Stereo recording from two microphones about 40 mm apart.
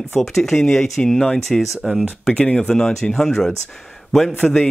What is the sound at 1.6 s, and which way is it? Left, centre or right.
Speech, centre.